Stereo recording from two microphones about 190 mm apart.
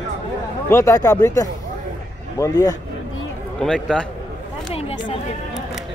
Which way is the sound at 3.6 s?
5° left (ahead or behind).